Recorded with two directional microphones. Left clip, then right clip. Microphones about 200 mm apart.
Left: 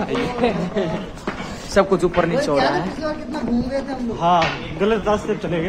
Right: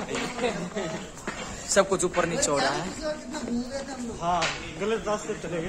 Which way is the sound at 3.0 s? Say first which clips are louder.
Left 7 dB; 30° left (ahead or behind).